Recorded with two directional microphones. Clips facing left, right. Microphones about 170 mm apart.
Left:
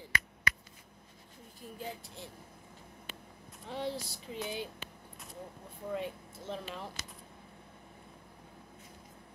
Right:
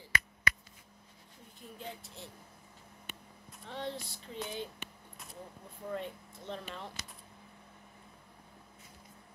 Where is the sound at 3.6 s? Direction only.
10° left (ahead or behind).